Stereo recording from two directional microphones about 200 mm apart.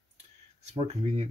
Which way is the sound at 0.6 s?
35° right (ahead or behind).